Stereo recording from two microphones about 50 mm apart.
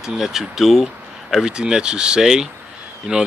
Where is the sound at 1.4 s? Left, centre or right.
Centre.